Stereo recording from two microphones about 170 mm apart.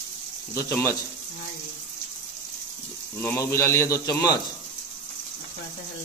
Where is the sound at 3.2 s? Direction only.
15° left (ahead or behind).